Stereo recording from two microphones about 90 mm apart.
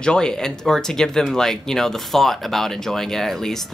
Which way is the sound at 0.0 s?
10° left (ahead or behind).